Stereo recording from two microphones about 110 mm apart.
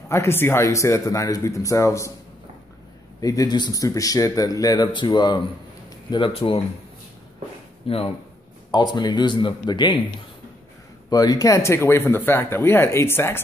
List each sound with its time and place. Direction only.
0.1 s speech: 25° left (ahead or behind)
3.2 s speech: 35° left (ahead or behind); by 6.6 s 60° left (ahead or behind)
7.8 s speech: 60° left (ahead or behind)
8.7 s speech: 40° left (ahead or behind)
11.1 s speech: 35° left (ahead or behind)